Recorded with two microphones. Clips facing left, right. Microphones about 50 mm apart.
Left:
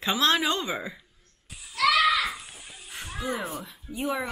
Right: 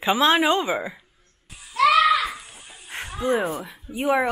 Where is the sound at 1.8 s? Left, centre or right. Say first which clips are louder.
Right 5 dB; right.